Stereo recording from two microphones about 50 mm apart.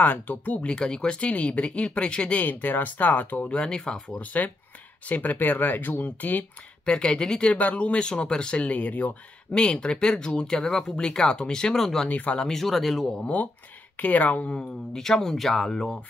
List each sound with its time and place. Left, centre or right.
0.0 s speech: left
0.7 s speech: centre
2.4 s speech: left
3.5 s speech: centre
4.2 s speech: left
6.9 s speech: centre
7.5 s speech: left
9.5 s speech: centre
12.1 s speech: left
12.4 s speech: centre
13.9 s speech: left
15.0 s speech: centre